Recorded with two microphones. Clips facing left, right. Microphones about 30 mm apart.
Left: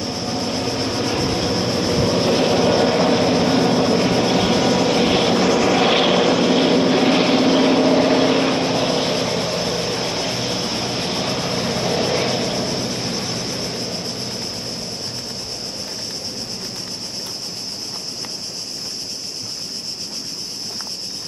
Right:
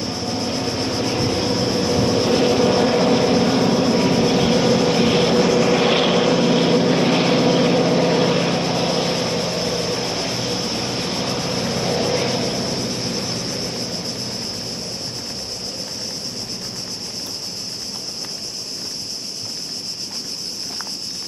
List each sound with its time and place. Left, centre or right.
0.0 s vehicle: centre